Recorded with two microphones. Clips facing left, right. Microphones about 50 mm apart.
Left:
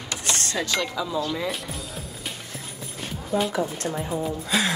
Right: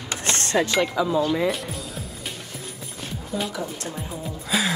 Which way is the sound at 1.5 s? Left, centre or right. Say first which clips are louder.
Right 3 dB; centre.